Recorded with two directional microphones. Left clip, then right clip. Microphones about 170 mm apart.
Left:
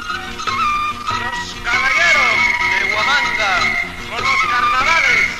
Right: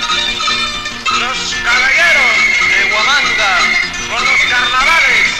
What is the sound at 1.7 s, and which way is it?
Music, 25° left (ahead or behind).